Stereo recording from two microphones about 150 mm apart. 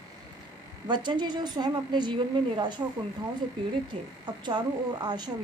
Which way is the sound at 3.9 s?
40° right (ahead or behind).